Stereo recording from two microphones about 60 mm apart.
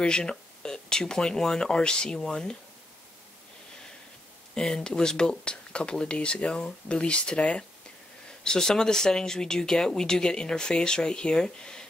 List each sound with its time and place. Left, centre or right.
0.0 s speech: centre
4.6 s speech: centre